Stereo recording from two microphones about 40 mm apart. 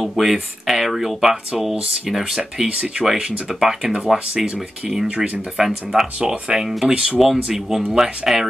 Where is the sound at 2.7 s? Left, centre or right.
Right.